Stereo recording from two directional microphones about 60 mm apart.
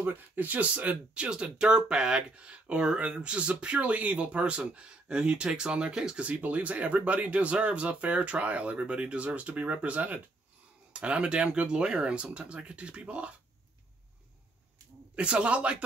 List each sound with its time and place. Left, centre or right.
0.0 s speech: right
15.1 s speech: right